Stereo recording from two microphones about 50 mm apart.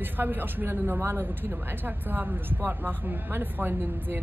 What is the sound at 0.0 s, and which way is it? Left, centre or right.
A man's voice, right.